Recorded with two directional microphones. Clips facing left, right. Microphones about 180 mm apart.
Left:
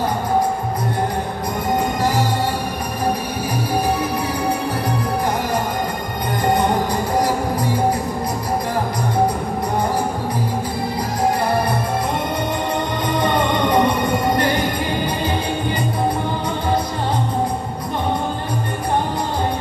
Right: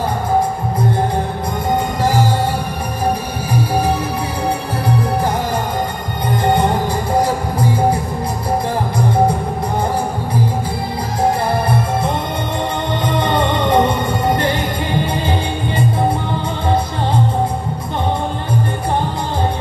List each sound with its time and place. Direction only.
13.3 s music: 25° right (ahead or behind)